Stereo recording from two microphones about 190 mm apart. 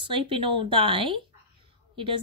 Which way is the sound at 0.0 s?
30° right (ahead or behind).